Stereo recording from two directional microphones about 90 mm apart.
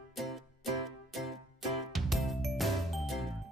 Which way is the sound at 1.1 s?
Centre (ahead or behind).